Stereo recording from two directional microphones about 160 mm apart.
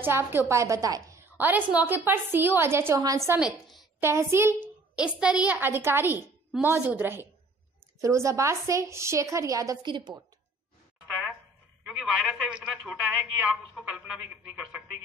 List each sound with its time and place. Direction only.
0.0 s a woman's voice: 15° right (ahead or behind)
3.3 s a woman's voice: 5° right (ahead or behind)
4.0 s a woman's voice: 15° right (ahead or behind)
11.8 s a woman's voice: centre (ahead or behind)